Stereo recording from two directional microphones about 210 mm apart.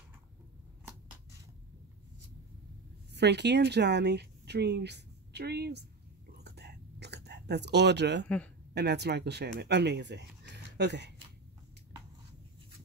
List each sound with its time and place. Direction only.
3.1 s speech: 55° right (ahead or behind)
6.4 s whispering: 50° right (ahead or behind)
8.7 s speech: 55° right (ahead or behind)